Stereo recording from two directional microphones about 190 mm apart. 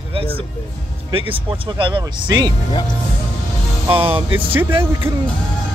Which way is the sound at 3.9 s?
30° right (ahead or behind).